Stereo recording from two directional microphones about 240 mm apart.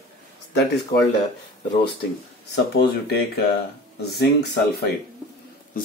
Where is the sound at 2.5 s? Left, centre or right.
Left.